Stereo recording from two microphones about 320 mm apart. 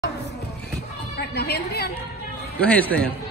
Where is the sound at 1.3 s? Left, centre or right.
Left.